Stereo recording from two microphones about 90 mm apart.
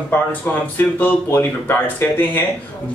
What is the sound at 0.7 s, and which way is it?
Speech, 25° left (ahead or behind).